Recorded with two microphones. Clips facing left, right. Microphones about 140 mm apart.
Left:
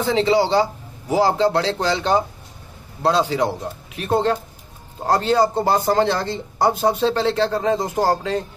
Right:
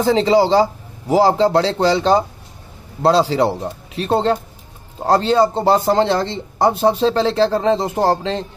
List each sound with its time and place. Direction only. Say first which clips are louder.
0.0 s a man's voice: right 4 dB; 35° right (ahead or behind)